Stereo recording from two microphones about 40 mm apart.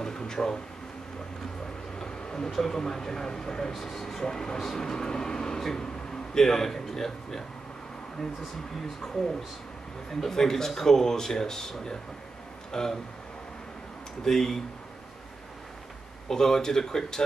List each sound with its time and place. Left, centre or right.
0.0 s a sound: centre
2.0 s speech: centre
10.2 s speech: centre
14.2 s speech: centre
16.3 s speech: centre